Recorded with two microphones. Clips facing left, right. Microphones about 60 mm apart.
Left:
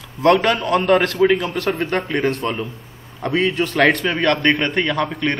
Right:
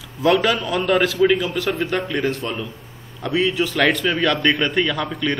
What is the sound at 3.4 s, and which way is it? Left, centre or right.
Speech, left.